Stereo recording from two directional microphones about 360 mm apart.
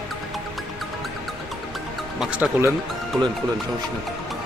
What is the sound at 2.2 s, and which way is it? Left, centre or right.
Speech, centre.